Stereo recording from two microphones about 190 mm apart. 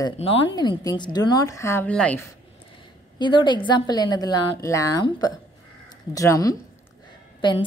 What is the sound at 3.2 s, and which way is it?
A woman's voice, 25° left (ahead or behind).